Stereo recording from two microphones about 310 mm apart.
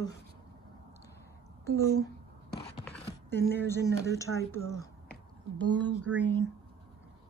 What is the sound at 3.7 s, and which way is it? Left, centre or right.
Speech, centre.